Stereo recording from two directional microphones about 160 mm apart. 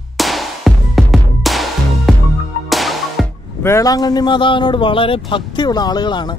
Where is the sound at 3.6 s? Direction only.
20° left (ahead or behind).